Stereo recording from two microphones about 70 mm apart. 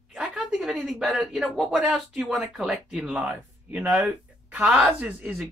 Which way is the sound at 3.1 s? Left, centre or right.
Right.